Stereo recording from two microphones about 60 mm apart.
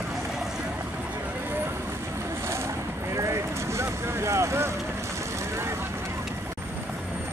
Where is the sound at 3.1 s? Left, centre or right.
Right.